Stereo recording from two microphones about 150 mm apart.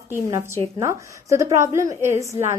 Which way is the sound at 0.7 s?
20° right (ahead or behind).